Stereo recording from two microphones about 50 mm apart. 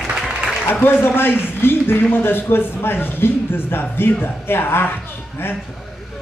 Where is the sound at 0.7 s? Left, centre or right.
Left.